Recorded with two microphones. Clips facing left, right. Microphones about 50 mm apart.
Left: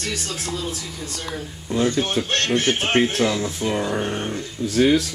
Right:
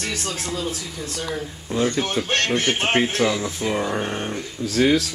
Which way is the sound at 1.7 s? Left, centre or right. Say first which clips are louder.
Left 1 dB; right.